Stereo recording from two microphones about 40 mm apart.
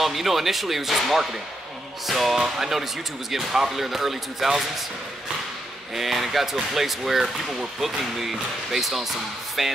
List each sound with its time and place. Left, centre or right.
0.0 s speech: centre
5.9 s speech: centre